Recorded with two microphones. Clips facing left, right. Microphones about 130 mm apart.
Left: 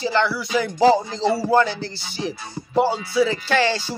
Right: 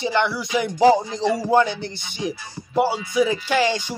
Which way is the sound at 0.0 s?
20° right (ahead or behind).